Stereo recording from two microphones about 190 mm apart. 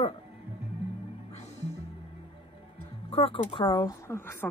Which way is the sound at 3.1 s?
30° left (ahead or behind).